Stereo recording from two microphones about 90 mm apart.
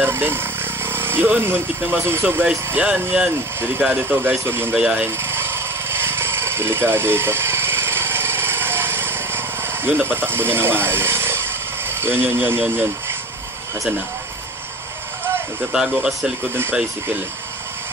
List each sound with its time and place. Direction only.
0.0 s speech: 25° right (ahead or behind)
4.7 s speech: 10° right (ahead or behind)
5.0 s a sound: 25° right (ahead or behind)
9.8 s speech: 25° right (ahead or behind)
15.7 s speech: 10° right (ahead or behind)